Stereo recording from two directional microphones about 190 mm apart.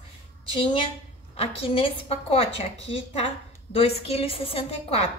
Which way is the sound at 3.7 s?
30° left (ahead or behind).